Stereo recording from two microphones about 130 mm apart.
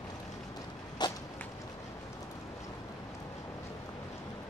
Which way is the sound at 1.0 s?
35° left (ahead or behind).